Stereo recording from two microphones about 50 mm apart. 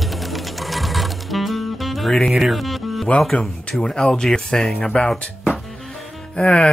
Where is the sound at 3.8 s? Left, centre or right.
Centre.